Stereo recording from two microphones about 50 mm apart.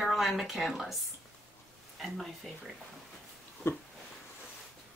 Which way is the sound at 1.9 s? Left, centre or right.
Centre.